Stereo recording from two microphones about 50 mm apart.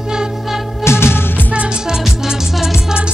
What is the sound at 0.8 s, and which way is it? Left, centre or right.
Music, left.